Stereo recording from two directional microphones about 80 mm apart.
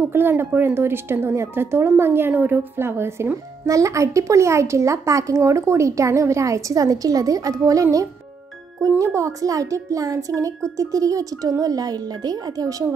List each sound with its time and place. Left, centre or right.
0.1 s a woman's voice: right
3.6 s a child's voice: right